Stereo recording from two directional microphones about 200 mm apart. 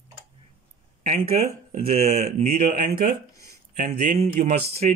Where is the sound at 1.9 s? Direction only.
35° right (ahead or behind).